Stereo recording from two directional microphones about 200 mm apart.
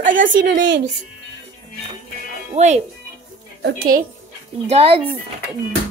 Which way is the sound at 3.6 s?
60° right (ahead or behind).